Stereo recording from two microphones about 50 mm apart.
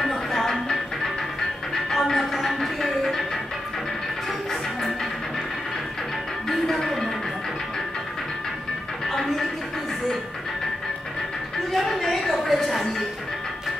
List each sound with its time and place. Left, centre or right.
0.0 s music: centre
6.5 s music: centre
11.7 s a sound: centre